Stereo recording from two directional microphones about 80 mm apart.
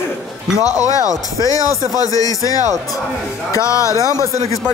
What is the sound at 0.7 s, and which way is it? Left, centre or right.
Speech, left.